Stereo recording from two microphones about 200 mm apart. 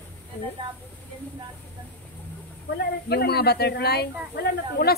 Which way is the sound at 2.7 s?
55° left (ahead or behind).